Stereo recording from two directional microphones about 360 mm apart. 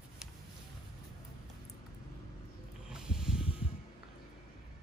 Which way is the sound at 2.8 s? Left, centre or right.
Centre.